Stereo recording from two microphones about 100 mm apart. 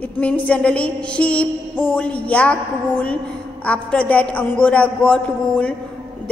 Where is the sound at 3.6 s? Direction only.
10° left (ahead or behind).